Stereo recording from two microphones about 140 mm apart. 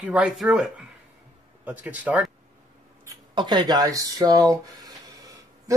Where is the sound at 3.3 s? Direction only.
30° right (ahead or behind).